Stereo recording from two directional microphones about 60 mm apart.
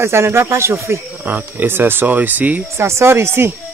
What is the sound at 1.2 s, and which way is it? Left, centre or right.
Speech, right.